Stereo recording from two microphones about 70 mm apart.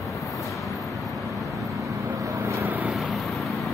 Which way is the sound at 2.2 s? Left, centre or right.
Right.